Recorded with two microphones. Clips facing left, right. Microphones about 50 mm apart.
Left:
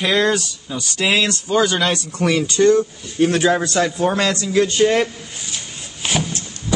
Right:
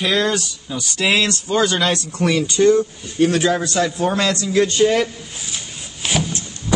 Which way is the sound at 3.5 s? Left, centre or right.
Left.